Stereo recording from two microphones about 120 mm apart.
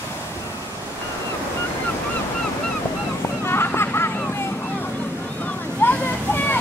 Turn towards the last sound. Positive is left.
turn(degrees=15)  # may be behind; listen again after turning